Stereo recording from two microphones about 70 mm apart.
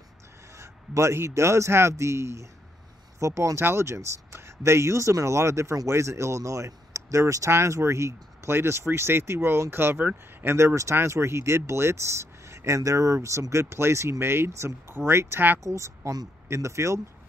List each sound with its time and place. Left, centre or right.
0.6 s a man's voice: right